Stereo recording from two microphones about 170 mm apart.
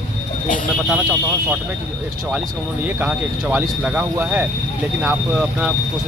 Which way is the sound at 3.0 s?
10° right (ahead or behind).